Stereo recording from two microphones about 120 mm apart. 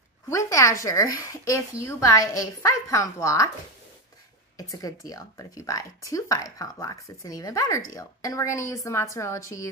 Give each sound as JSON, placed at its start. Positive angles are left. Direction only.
{"t": 0.3, "sound": "speech", "side_deg": 25}
{"t": 4.6, "sound": "speech", "side_deg": 30}